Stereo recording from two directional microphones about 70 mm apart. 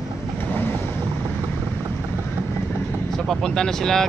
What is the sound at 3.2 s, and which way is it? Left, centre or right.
Vehicle, centre.